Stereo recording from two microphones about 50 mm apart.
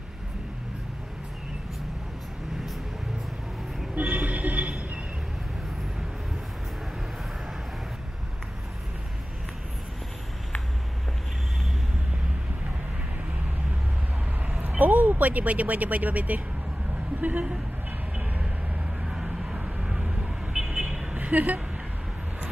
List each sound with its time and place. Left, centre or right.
3.9 s music: right
14.5 s speech: right
18.1 s vehicle: right
21.2 s speech: right